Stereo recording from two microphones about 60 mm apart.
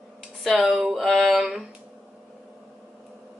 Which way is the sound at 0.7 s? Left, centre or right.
Centre.